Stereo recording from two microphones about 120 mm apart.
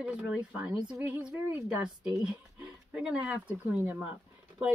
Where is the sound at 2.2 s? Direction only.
10° right (ahead or behind).